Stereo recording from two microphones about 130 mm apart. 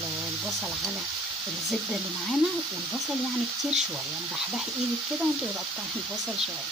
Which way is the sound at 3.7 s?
5° right (ahead or behind).